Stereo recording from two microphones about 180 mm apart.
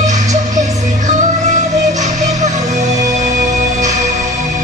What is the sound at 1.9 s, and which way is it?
Music, 40° right (ahead or behind).